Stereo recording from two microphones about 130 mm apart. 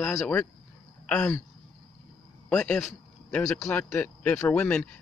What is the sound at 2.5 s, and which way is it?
Speech, 10° left (ahead or behind).